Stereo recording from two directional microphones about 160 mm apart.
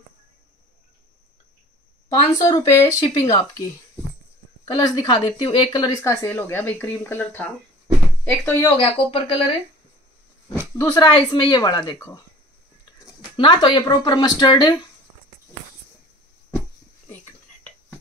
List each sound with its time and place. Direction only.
2.0 s speech: 25° left (ahead or behind)
4.6 s speech: 25° left (ahead or behind); by 8.6 s 10° left (ahead or behind)
8.6 s speech: 30° left (ahead or behind)
10.8 s speech: 25° left (ahead or behind)
13.4 s speech: 25° left (ahead or behind)